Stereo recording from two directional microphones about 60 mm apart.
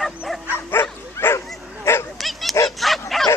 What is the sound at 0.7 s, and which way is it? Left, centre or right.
Bow-wow, left.